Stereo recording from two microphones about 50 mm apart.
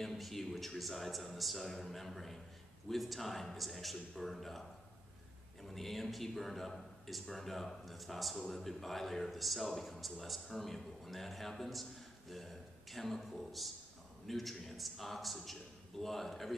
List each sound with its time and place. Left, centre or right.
0.0 s a man's voice: centre